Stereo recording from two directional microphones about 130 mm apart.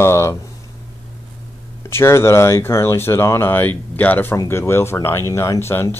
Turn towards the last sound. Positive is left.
turn(degrees=20)  # may be behind; listen again after turning